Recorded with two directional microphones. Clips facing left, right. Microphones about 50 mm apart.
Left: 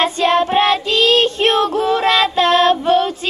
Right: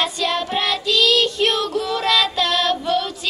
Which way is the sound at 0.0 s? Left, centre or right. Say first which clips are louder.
Left 7 dB; left.